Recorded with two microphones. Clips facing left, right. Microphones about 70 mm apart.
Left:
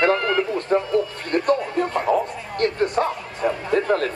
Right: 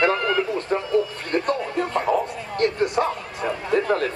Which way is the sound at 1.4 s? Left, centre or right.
Centre.